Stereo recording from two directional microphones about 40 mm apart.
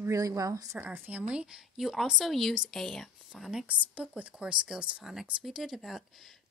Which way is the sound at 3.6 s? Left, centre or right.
Right.